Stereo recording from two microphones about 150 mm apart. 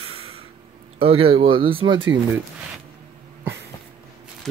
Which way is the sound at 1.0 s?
40° right (ahead or behind).